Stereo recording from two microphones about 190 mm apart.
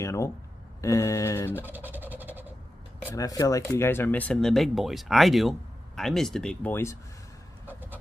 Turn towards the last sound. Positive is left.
turn(degrees=10)  # may be behind; listen again after turning